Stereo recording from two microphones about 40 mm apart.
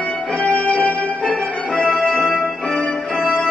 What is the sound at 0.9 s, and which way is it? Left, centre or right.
Music, right.